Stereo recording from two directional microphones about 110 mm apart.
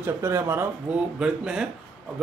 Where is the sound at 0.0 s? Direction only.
25° right (ahead or behind).